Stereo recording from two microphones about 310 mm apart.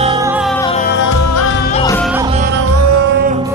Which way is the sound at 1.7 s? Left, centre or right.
Centre.